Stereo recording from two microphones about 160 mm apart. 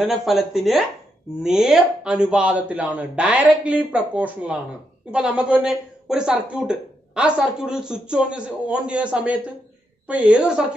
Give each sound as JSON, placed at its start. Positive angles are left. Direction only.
{"t": 0.0, "sound": "a woman's voice", "side_deg": 0}